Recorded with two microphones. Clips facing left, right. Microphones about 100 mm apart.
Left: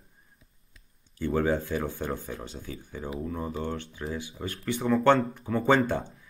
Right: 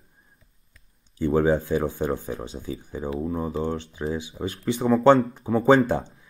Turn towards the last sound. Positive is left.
turn(degrees=-20)  # may be behind; listen again after turning